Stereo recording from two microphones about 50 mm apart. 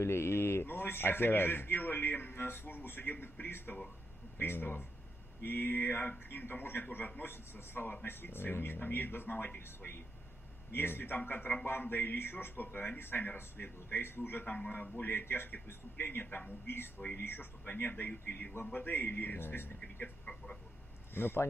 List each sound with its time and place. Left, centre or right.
0.0 s a man's voice: left
9.6 s a man's voice: left
16.6 s a man's voice: left
18.5 s speech: left
20.3 s a man's voice: left
21.1 s speech: left